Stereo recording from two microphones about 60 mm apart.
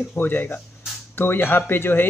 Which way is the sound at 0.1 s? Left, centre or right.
Left.